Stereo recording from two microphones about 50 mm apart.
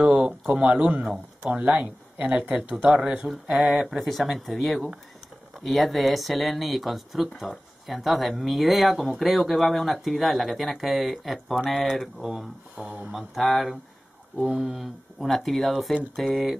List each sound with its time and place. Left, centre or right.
0.0 s a sound: right
0.7 s speech: right
3.3 s speech: centre
12.7 s speech: right
13.1 s speech: centre
14.4 s speech: centre
15.2 s speech: centre